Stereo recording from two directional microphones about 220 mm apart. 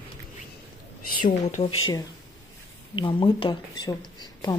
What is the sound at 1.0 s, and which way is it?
Speech, 35° left (ahead or behind).